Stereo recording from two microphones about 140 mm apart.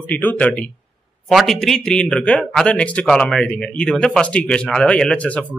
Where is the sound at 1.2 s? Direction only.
Centre (ahead or behind).